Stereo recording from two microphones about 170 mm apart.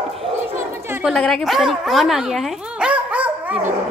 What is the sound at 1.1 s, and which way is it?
A woman's voice, centre (ahead or behind).